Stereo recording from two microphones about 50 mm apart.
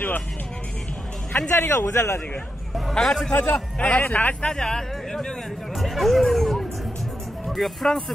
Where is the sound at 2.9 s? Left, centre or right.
Centre.